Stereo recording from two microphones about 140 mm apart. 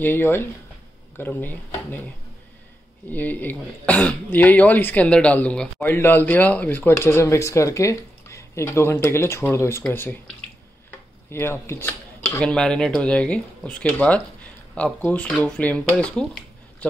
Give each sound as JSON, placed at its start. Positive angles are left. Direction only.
{"t": 0.0, "sound": "speech", "side_deg": 15}
{"t": 3.1, "sound": "speech", "side_deg": 10}
{"t": 11.2, "sound": "speech", "side_deg": 20}
{"t": 12.4, "sound": "speech", "side_deg": 5}